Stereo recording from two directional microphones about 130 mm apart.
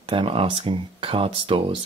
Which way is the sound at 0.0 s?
45° right (ahead or behind).